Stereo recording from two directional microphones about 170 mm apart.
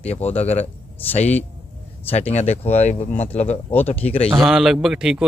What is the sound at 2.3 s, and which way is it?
A man's voice, 40° left (ahead or behind).